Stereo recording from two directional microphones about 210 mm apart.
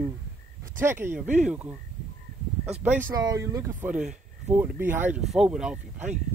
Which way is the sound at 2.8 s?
10° right (ahead or behind).